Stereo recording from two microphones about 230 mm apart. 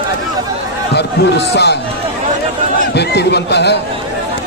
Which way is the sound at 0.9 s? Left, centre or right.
Left.